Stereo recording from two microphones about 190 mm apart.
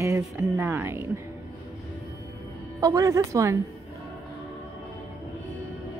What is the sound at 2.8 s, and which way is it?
Speech, 15° right (ahead or behind).